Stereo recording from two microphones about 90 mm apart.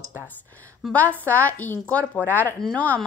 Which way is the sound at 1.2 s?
15° left (ahead or behind).